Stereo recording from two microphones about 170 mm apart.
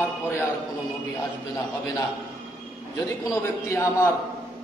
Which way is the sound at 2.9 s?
20° left (ahead or behind).